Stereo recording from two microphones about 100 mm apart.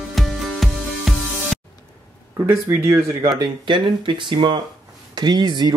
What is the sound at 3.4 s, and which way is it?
Speech, 50° right (ahead or behind).